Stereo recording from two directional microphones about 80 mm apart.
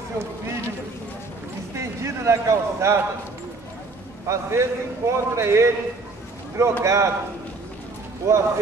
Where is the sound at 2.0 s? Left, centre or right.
Right.